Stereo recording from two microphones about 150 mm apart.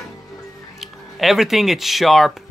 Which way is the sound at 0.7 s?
Centre (ahead or behind).